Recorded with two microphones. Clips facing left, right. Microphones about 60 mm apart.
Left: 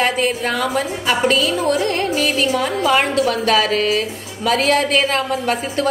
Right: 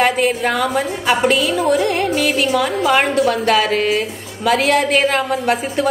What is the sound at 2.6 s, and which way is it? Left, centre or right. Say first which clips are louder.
Speech: right 1 dB; centre.